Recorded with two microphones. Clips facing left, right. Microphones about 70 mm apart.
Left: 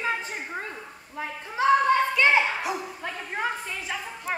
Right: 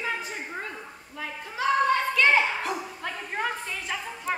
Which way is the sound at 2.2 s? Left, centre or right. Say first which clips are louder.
Even; centre.